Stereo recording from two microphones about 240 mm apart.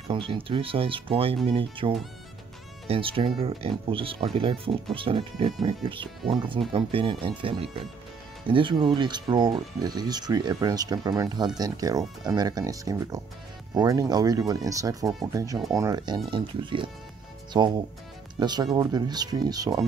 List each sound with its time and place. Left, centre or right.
0.1 s speech: right